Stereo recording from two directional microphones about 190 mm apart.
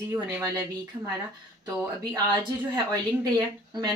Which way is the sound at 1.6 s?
20° right (ahead or behind).